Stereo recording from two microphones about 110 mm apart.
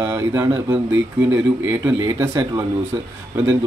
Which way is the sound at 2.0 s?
30° right (ahead or behind).